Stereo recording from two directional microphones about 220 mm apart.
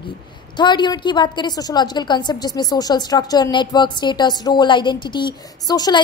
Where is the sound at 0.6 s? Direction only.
20° left (ahead or behind).